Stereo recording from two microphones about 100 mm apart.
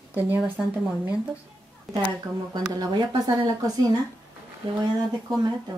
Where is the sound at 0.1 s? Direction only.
20° right (ahead or behind).